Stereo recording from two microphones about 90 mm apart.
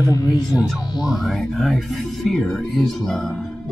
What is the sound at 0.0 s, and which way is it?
Speech, 40° left (ahead or behind).